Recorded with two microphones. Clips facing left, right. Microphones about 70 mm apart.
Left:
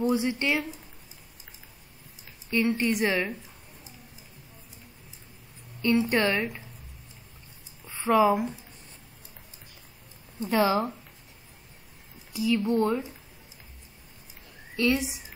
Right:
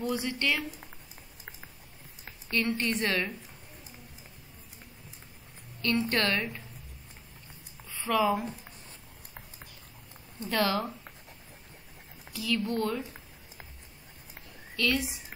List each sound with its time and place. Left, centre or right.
0.1 s speech: left
2.5 s a woman's voice: centre
5.8 s a woman's voice: centre
7.8 s a sound: left
10.5 s speech: centre
12.3 s a woman's voice: centre
14.8 s speech: centre